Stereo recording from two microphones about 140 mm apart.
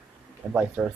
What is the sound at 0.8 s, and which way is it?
Speech, 10° right (ahead or behind).